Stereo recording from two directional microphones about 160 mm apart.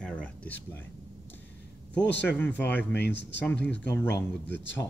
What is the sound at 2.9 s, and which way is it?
Speech, 90° left.